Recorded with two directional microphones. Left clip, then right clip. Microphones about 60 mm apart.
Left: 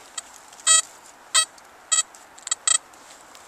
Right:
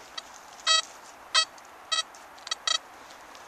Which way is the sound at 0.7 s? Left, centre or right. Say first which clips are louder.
Left 3 dB; centre.